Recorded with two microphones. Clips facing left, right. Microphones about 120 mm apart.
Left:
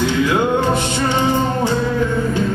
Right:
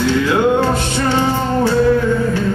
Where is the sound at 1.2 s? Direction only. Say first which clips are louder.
Even; 15° left (ahead or behind).